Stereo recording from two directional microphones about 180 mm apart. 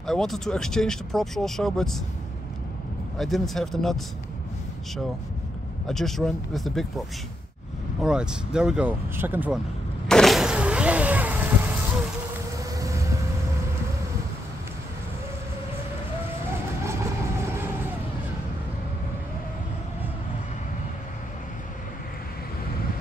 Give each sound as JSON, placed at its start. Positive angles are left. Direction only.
{"t": 0.0, "sound": "speech", "side_deg": 0}
{"t": 3.2, "sound": "speech", "side_deg": 0}
{"t": 5.9, "sound": "speech", "side_deg": 0}
{"t": 8.0, "sound": "speech", "side_deg": -5}
{"t": 10.0, "sound": "vehicle", "side_deg": 0}
{"t": 12.7, "sound": "vehicle", "side_deg": -15}